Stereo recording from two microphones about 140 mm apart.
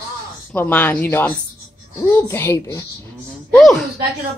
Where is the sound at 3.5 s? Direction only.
Centre (ahead or behind).